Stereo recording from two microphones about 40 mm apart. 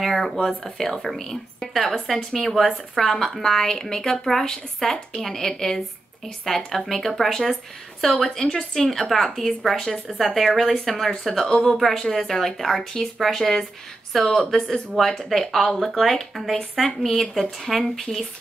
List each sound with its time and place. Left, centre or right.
0.0 s speech: centre
8.5 s speech: centre
11.4 s speech: left
11.9 s speech: centre